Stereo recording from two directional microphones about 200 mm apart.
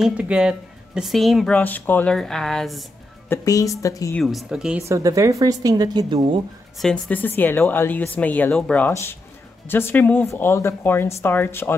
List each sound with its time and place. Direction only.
0.0 s speech: 5° right (ahead or behind)
3.3 s speech: 15° left (ahead or behind)
4.2 s speech: centre (ahead or behind)
4.8 s a woman's voice: 15° right (ahead or behind)
6.8 s speech: 5° left (ahead or behind)